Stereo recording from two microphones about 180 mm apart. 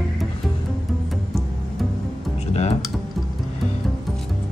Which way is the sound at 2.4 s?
35° left (ahead or behind).